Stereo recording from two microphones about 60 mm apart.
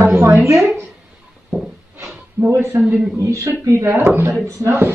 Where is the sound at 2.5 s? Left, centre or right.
Right.